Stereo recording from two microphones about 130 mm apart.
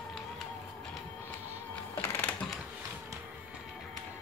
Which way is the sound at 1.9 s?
20° left (ahead or behind).